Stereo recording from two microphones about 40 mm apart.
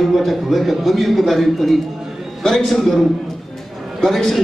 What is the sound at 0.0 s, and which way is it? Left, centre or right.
A man's voice, centre.